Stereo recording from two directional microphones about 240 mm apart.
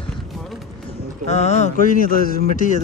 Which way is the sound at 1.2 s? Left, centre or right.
Left.